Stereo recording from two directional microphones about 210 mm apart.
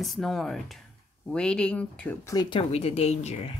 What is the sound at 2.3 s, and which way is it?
Speech, 25° left (ahead or behind).